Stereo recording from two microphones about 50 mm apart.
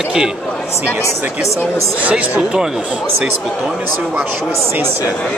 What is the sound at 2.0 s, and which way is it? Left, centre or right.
Speech, right.